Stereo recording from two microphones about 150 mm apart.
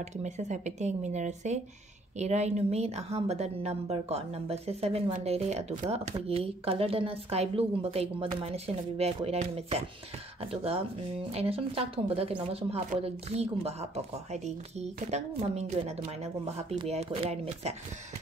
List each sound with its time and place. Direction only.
0.0 s a woman's voice: 50° right (ahead or behind)
8.4 s chopping: 40° right (ahead or behind)
13.0 s a woman's voice: 40° right (ahead or behind)